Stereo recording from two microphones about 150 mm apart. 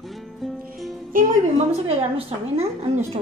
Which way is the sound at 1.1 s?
70° right (ahead or behind).